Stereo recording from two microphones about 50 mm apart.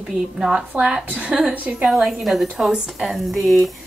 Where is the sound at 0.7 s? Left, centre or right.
Right.